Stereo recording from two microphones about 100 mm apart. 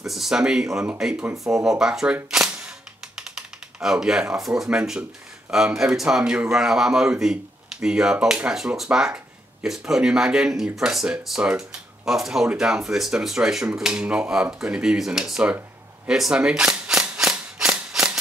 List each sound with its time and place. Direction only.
0.0 s speech: centre (ahead or behind)
2.3 s cap gun: 5° right (ahead or behind)
3.2 s typing: 5° right (ahead or behind)
4.6 s a man's voice: 5° right (ahead or behind)
16.1 s a sound: 5° right (ahead or behind)